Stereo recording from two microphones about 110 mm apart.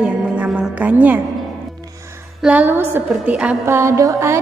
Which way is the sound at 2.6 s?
20° right (ahead or behind).